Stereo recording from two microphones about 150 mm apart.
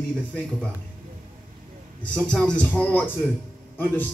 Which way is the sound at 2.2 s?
5° left (ahead or behind).